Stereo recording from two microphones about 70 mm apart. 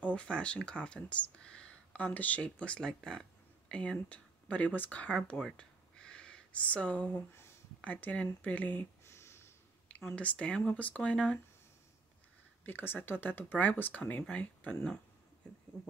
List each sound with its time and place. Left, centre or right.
0.0 s speech: centre
9.0 s a sound: left
10.1 s speech: centre
12.6 s speech: left